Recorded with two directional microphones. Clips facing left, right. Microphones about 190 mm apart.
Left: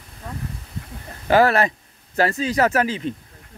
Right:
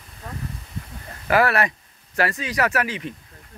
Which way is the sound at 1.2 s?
30° left (ahead or behind).